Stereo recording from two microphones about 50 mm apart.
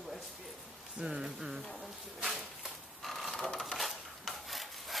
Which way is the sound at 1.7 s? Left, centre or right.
Centre.